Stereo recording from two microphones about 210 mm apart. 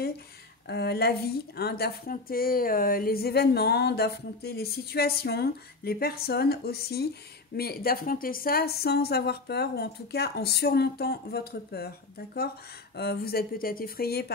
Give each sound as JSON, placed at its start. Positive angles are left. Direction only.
{"t": 0.7, "sound": "a woman's voice", "side_deg": 50}
{"t": 12.9, "sound": "a woman's voice", "side_deg": 50}